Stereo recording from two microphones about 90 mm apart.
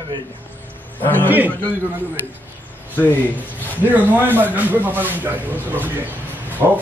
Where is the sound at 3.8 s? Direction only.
20° right (ahead or behind).